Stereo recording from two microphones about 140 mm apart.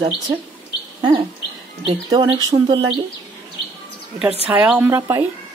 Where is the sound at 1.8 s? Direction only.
30° right (ahead or behind).